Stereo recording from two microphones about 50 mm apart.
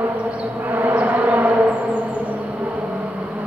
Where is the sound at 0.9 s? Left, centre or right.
Right.